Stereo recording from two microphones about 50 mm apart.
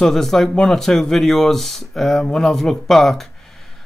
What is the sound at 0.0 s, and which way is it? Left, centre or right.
Speech, centre.